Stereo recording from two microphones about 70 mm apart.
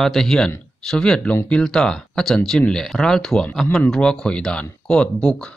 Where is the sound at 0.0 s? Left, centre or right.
Centre.